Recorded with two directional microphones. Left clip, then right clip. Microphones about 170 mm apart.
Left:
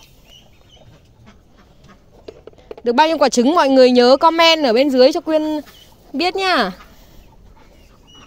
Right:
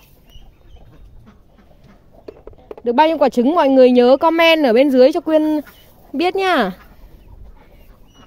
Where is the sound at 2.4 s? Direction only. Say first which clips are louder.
Left 1 dB; 10° right (ahead or behind); by 6.7 s 25° right (ahead or behind).